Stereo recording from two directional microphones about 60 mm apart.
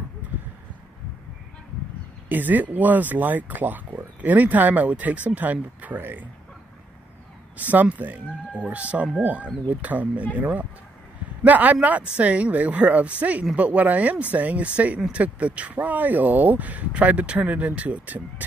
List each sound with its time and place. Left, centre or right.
2.2 s speech: right
7.5 s speech: right